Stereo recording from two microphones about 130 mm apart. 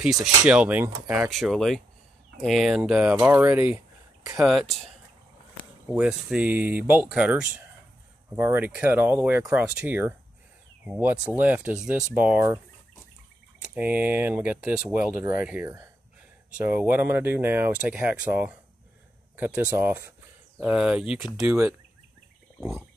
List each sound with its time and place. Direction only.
0.0 s speech: 5° right (ahead or behind)
1.0 s speech: 25° right (ahead or behind)
1.3 s speech: centre (ahead or behind)
4.4 s speech: centre (ahead or behind)
5.9 s speech: 10° right (ahead or behind)
13.6 s speech: 10° right (ahead or behind)